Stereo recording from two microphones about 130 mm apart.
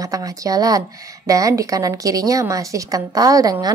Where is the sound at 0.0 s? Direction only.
25° right (ahead or behind).